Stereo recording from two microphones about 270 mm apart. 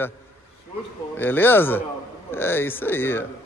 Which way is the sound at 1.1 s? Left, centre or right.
Centre.